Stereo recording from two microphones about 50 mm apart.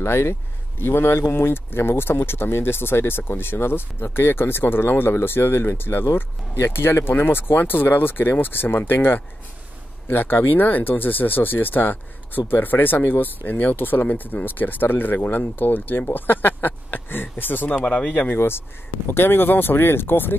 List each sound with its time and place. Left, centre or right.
0.0 s speech: left
17.7 s speech: left
19.0 s speech: left